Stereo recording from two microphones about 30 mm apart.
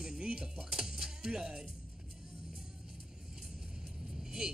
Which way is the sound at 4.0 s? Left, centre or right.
Centre.